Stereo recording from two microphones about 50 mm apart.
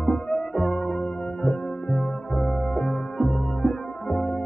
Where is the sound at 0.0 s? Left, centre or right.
Centre.